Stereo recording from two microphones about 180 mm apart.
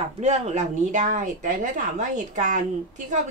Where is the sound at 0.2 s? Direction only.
40° right (ahead or behind).